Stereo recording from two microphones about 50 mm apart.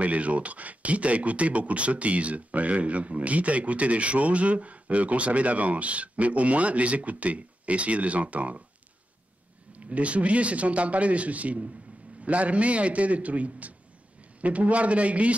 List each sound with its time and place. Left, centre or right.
0.0 s speech: right
9.7 s speech: right